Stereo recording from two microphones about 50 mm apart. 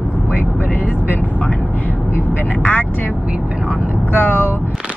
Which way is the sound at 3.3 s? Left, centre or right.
Right.